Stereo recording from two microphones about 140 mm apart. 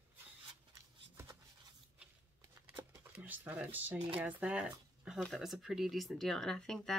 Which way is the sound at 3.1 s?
10° right (ahead or behind).